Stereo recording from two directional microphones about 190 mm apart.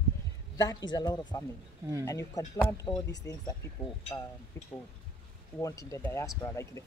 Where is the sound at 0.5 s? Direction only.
20° left (ahead or behind).